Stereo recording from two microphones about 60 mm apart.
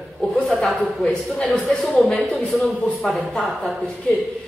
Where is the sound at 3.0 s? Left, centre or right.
Centre.